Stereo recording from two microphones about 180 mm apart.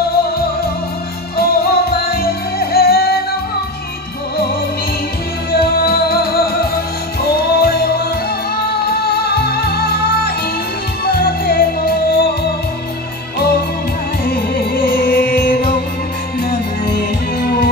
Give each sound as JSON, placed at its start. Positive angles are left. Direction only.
{"t": 1.3, "sound": "music", "side_deg": 60}
{"t": 5.5, "sound": "music", "side_deg": 60}
{"t": 17.4, "sound": "music", "side_deg": 60}